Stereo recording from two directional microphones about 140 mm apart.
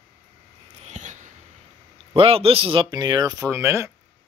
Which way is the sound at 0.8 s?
60° right (ahead or behind).